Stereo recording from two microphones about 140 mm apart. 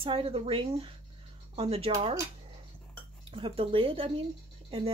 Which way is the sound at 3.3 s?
40° right (ahead or behind).